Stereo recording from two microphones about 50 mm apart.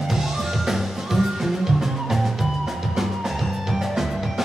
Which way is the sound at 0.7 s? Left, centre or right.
Centre.